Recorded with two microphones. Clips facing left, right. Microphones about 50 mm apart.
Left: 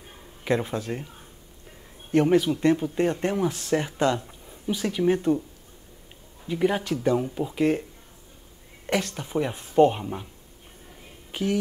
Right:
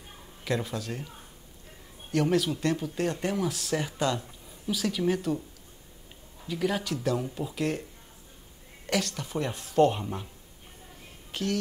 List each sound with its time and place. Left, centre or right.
0.4 s speech: left
2.1 s speech: centre
6.4 s speech: left
8.8 s speech: centre
11.3 s speech: centre